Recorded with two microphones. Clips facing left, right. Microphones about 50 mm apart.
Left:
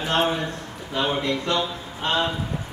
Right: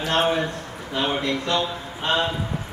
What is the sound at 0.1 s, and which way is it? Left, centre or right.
A man's voice, centre.